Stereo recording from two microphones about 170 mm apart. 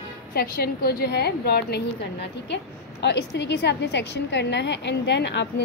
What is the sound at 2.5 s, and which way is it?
A woman's voice, 85° left.